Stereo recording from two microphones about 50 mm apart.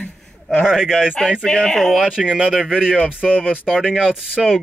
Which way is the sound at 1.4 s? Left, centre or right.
Centre.